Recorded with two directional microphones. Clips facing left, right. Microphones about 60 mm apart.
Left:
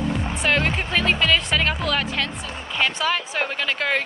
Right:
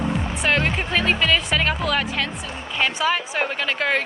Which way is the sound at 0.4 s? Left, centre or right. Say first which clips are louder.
Even; centre.